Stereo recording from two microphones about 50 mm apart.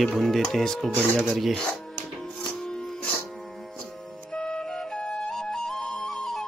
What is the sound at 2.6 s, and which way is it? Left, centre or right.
Music, centre.